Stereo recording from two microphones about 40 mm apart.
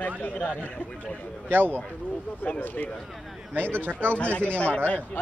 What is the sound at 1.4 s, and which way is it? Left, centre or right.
Speech, right.